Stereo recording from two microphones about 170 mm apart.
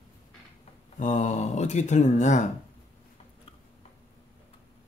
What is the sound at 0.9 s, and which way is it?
A man's voice, 50° left (ahead or behind).